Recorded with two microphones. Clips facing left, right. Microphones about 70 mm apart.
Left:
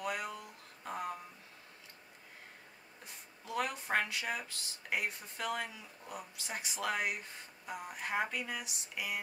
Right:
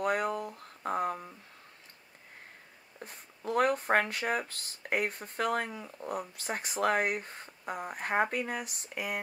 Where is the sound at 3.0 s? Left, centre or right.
Right.